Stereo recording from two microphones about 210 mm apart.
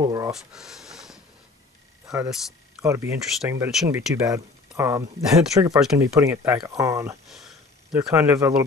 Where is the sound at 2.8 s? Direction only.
15° right (ahead or behind).